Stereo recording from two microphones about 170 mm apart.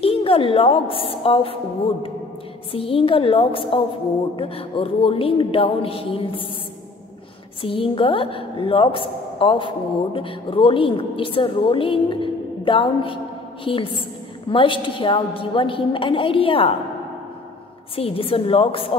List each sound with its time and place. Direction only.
0.0 s a woman's voice: 35° left (ahead or behind)
2.7 s a woman's voice: 35° left (ahead or behind)
7.6 s a woman's voice: 30° left (ahead or behind)
17.9 s a woman's voice: 35° left (ahead or behind)